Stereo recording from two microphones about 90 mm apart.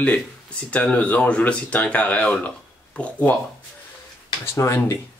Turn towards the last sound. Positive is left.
turn(degrees=30)  # may be behind; listen again after turning